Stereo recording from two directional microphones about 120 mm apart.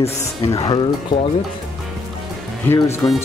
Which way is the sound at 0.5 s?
40° left (ahead or behind).